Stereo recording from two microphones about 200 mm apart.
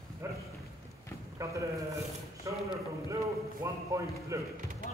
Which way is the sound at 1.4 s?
15° right (ahead or behind).